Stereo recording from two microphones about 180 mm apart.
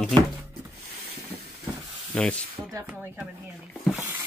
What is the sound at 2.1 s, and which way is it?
Speech, 5° left (ahead or behind).